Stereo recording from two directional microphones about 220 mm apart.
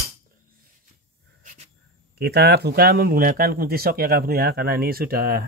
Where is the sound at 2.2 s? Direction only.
45° right (ahead or behind).